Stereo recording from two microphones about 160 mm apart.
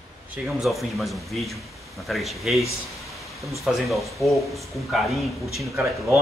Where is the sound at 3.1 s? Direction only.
Centre (ahead or behind).